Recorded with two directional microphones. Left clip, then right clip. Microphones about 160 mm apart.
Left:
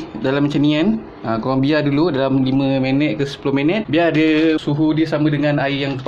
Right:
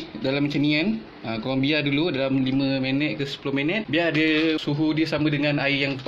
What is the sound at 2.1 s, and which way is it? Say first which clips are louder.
Speech: left 6 dB; centre (ahead or behind).